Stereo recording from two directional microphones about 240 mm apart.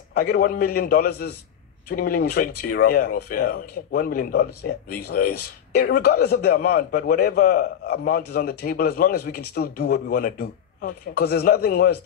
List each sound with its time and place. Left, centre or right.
0.1 s a man's voice: left